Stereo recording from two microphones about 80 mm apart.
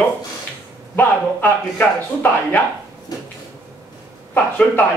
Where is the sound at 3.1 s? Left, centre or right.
Left.